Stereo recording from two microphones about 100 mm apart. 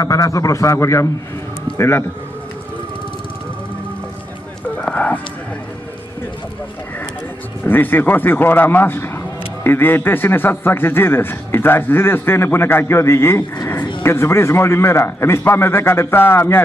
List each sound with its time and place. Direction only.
0.0 s a man's voice: 35° left (ahead or behind)
4.7 s a sound: 15° left (ahead or behind)
7.6 s a man's voice: 20° left (ahead or behind)